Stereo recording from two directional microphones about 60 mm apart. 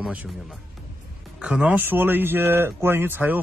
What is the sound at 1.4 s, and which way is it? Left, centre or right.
Speech, centre.